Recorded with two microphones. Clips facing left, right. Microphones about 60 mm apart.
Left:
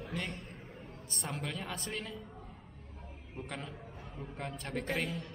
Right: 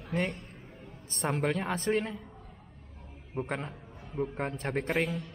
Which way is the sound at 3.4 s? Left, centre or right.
Right.